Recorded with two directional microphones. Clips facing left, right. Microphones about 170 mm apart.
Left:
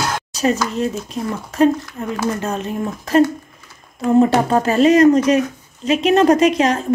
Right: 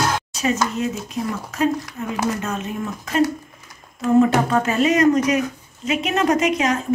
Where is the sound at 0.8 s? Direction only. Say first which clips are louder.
Left 2 dB; 30° left (ahead or behind).